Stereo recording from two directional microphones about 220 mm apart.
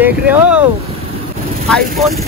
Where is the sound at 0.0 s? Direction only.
10° right (ahead or behind).